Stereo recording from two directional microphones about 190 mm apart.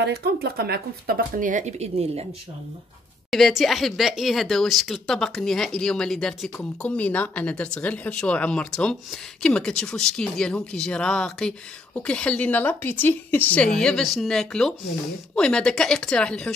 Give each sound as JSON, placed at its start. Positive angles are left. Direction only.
{"t": 0.0, "sound": "speech", "side_deg": -55}
{"t": 3.3, "sound": "speech", "side_deg": 0}